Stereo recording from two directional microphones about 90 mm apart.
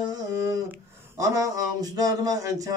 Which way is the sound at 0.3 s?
35° right (ahead or behind).